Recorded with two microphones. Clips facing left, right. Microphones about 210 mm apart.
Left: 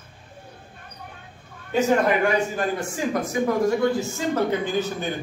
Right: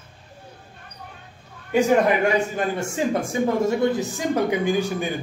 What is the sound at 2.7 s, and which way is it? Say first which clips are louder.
Speech: right 2 dB; 25° right (ahead or behind).